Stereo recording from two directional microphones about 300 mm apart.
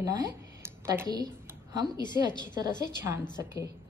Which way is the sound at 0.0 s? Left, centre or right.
Centre.